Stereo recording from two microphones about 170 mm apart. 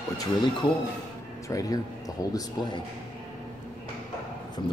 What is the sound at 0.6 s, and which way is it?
A man's voice, 30° left (ahead or behind).